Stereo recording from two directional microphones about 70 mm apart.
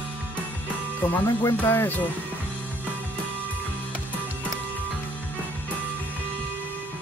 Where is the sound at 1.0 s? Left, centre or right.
Left.